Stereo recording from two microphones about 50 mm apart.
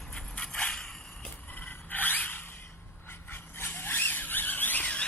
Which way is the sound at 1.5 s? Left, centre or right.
Left.